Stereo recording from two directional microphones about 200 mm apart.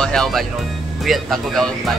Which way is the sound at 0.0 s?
5° left (ahead or behind).